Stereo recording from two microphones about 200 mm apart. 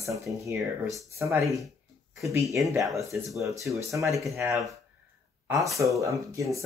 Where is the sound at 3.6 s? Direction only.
15° right (ahead or behind).